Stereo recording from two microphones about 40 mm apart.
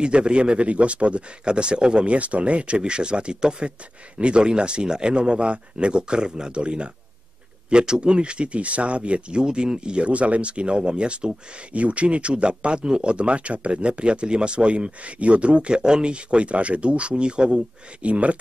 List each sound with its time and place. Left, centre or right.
0.0 s speech: right
2.1 s speech: right